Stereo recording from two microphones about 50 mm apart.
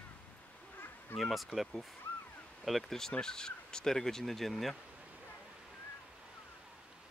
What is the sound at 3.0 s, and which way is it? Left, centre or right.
Speech, centre.